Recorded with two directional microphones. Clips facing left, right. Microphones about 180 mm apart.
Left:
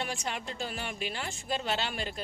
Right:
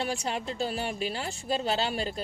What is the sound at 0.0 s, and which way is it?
Speech, 35° right (ahead or behind).